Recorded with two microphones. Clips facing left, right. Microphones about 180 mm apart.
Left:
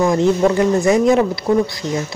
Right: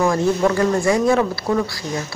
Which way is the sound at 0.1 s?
20° left (ahead or behind).